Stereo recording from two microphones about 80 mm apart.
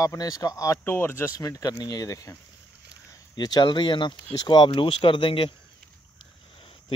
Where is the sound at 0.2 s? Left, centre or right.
Left.